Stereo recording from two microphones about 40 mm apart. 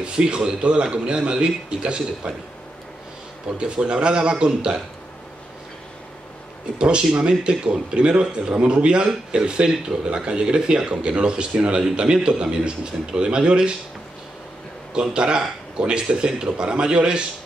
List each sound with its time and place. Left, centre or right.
0.0 s a man's voice: right
3.5 s a man's voice: right
6.8 s a man's voice: right
15.0 s a man's voice: right